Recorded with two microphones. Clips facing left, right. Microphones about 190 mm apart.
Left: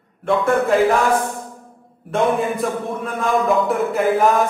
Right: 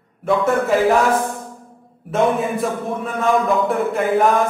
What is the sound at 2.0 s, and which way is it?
A man's voice, centre (ahead or behind).